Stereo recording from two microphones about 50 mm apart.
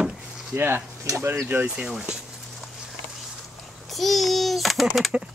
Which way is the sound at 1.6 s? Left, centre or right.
Right.